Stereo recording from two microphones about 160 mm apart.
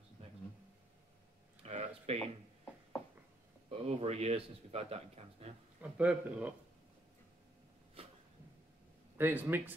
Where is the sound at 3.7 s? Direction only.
40° right (ahead or behind).